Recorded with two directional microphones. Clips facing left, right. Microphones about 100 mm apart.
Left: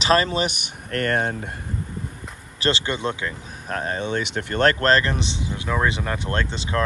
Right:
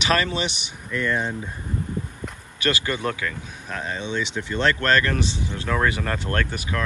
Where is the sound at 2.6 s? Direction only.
25° left (ahead or behind).